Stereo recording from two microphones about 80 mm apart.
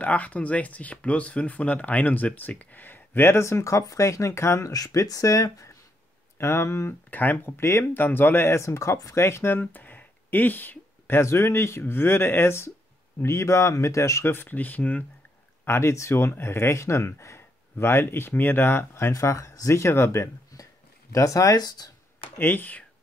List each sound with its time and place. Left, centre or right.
0.0 s speech: centre; by 5.7 s left
6.3 s speech: left
9.2 s speech: left
15.6 s speech: left
22.4 s speech: left